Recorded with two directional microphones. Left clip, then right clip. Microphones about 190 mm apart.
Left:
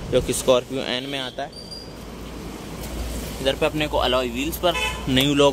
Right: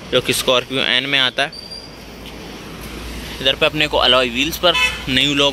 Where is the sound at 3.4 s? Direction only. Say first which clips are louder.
Right 6 dB; centre (ahead or behind).